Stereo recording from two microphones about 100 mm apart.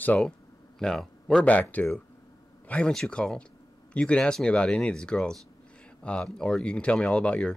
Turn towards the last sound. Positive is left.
turn(degrees=10)  # may be behind; listen again after turning